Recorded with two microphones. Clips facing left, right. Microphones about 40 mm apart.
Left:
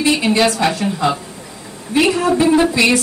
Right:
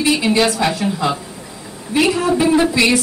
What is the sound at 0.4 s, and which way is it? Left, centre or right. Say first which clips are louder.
A woman's voice: left 1 dB; centre.